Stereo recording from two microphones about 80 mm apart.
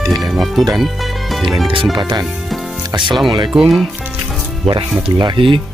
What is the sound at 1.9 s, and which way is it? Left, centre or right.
Speech, right.